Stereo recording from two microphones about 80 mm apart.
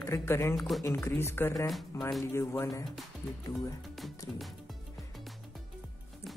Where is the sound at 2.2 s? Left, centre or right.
Left.